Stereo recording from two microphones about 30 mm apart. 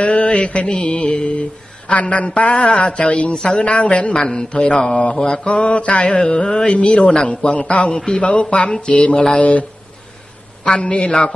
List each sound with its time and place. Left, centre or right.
0.0 s mantra: left
2.7 s a man's voice: left
6.3 s a man's voice: left
7.2 s mantra: left
7.9 s speech: left
8.2 s a man's voice: left
9.3 s mantra: left
10.8 s a man's voice: left